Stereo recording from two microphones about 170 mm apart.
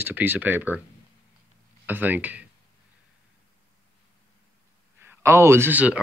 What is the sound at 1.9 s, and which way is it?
Speech, 10° right (ahead or behind).